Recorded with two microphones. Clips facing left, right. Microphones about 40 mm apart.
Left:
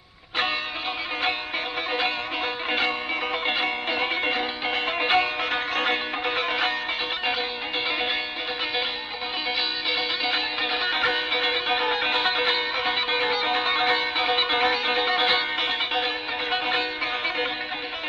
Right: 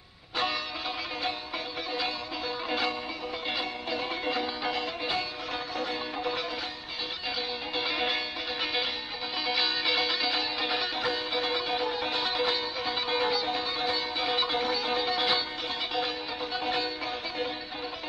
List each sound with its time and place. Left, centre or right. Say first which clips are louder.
1.9 s music: left 6 dB; left
3.4 s music: left 5 dB; left
9.6 s music: right 1 dB; centre
10.2 s music: left 4 dB; left
10.9 s music: left 7 dB; left